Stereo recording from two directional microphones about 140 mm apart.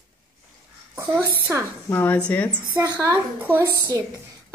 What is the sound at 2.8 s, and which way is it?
Child singing, 20° right (ahead or behind).